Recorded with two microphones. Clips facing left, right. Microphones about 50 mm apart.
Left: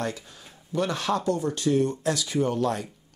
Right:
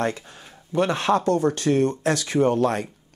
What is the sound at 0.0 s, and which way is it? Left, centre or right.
A man's voice, right.